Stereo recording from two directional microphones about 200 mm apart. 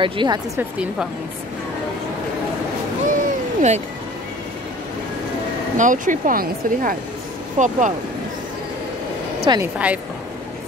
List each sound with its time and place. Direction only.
0.0 s a woman's voice: 25° right (ahead or behind)
0.6 s a woman's voice: 5° right (ahead or behind)
3.1 s a sound: 40° right (ahead or behind)
5.8 s speech: 40° right (ahead or behind)
9.5 s speech: 10° right (ahead or behind)